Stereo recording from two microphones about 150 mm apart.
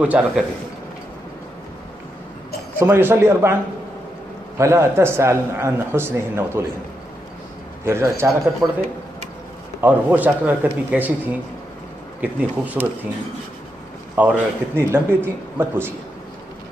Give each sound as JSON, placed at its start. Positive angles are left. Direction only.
{"t": 0.0, "sound": "a man's voice", "side_deg": -10}
{"t": 2.8, "sound": "a man's voice", "side_deg": -15}
{"t": 4.6, "sound": "a man's voice", "side_deg": -20}
{"t": 7.8, "sound": "a man's voice", "side_deg": -15}
{"t": 9.8, "sound": "a man's voice", "side_deg": -15}
{"t": 12.2, "sound": "a man's voice", "side_deg": -10}
{"t": 14.1, "sound": "a man's voice", "side_deg": -10}